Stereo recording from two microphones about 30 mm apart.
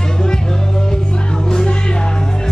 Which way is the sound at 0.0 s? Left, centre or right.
Left.